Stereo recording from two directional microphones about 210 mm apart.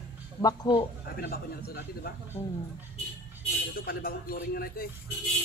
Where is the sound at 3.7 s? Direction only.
45° left (ahead or behind).